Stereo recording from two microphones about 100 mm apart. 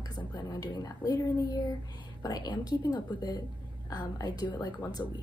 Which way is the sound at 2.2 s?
45° left (ahead or behind).